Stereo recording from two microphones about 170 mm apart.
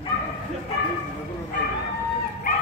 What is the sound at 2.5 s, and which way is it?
Bow-wow, 55° left (ahead or behind).